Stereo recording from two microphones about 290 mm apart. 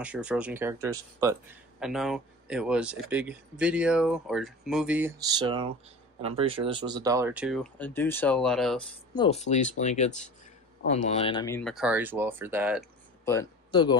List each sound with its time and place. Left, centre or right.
0.0 s speech: centre
9.1 s speech: centre
13.2 s speech: centre